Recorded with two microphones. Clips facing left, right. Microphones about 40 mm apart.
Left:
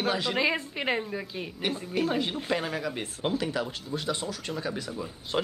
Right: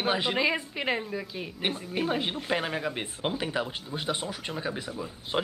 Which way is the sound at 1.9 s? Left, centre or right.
Centre.